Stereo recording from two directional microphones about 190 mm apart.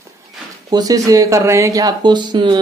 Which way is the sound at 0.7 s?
20° right (ahead or behind).